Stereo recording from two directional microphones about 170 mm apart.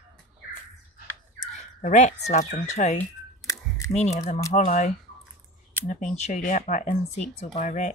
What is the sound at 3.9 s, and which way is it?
Speech, 40° left (ahead or behind).